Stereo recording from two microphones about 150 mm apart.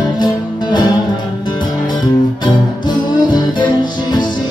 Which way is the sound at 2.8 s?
30° left (ahead or behind).